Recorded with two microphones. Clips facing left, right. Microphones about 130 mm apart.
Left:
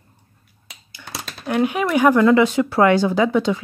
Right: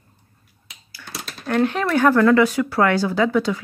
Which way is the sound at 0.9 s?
15° left (ahead or behind).